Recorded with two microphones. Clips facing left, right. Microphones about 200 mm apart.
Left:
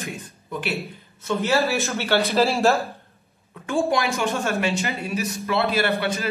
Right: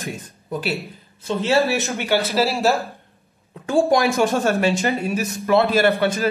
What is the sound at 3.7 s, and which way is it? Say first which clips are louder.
Speech: right 5 dB; 35° right (ahead or behind).